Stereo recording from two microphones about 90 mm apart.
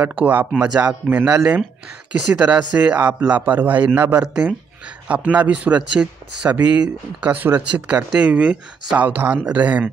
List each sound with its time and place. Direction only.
0.0 s a man's voice: 20° right (ahead or behind)